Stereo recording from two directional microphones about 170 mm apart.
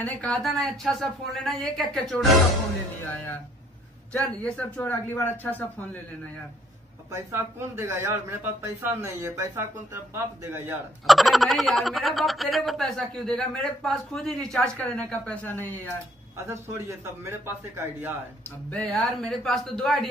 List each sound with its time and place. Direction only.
0.0 s speech: 5° left (ahead or behind)
4.4 s speech: 5° left (ahead or behind)
7.1 s a man's voice: 15° right (ahead or behind)
11.1 s speech: centre (ahead or behind)
16.3 s a man's voice: 15° right (ahead or behind)
18.7 s speech: 5° left (ahead or behind)